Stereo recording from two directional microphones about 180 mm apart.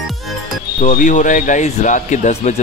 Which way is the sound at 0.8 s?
45° left (ahead or behind).